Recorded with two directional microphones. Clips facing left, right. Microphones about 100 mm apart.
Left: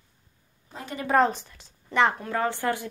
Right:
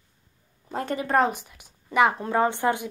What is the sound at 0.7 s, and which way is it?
Speech, 55° right (ahead or behind).